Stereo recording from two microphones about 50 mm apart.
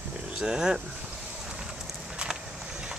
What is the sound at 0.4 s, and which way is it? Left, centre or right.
Speech, centre.